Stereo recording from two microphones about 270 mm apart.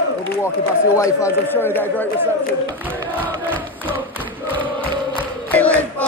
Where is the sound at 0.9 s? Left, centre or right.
Centre.